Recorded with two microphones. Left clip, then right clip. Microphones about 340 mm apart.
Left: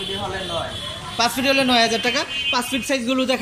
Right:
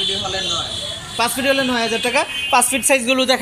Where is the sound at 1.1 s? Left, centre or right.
Centre.